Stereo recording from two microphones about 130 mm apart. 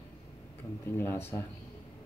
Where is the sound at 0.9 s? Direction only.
15° left (ahead or behind).